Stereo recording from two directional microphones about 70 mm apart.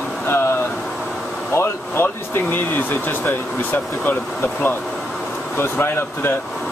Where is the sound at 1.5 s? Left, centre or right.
Left.